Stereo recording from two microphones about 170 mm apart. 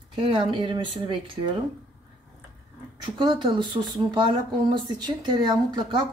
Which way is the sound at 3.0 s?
30° right (ahead or behind).